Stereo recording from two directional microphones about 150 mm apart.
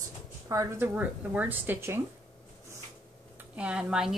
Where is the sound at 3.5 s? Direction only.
10° right (ahead or behind).